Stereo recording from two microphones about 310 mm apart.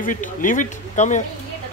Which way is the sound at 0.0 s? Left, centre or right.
Left.